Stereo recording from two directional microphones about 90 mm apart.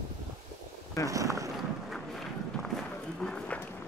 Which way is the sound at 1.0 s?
40° right (ahead or behind).